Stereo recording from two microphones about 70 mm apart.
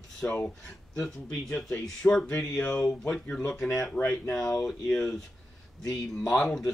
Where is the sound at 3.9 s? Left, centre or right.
Left.